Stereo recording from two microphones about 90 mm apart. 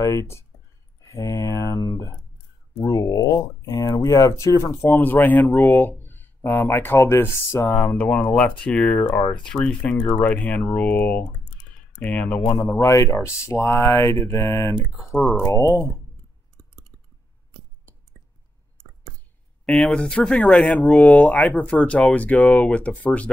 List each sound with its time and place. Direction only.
0.0 s speech: 35° left (ahead or behind)
5.0 s speech: 20° left (ahead or behind)
7.9 s speech: 15° left (ahead or behind); by 15.9 s 35° left (ahead or behind)
19.6 s speech: 5° left (ahead or behind)
21.2 s speech: 15° left (ahead or behind)